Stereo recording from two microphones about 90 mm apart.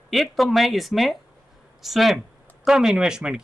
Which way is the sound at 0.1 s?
Centre (ahead or behind).